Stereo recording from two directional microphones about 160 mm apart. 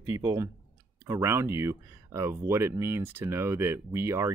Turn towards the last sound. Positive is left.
turn(degrees=-15)  # may be behind; listen again after turning